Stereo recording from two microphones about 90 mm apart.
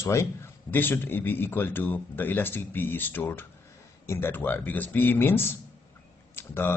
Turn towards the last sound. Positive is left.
turn(degrees=25)  # may be behind; listen again after turning